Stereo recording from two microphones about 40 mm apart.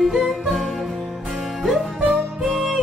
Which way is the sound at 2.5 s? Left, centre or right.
Centre.